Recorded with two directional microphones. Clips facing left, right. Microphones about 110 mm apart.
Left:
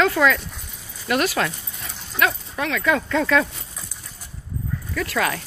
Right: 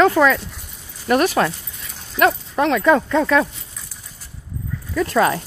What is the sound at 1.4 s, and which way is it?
Speech, 20° right (ahead or behind).